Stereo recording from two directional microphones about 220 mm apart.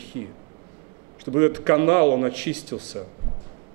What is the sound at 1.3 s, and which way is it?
Speech, 15° right (ahead or behind).